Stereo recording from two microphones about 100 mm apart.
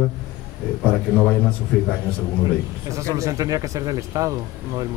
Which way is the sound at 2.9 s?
30° right (ahead or behind).